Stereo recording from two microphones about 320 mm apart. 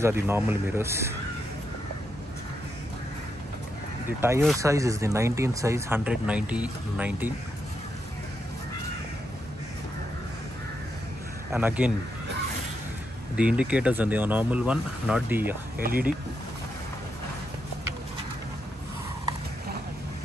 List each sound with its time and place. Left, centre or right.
0.0 s speech: centre
4.2 s speech: centre
11.5 s speech: centre
13.4 s speech: centre
15.8 s speech: right